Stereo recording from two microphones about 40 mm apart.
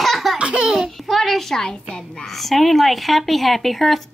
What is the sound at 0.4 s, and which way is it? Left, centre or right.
Baby laughter, right.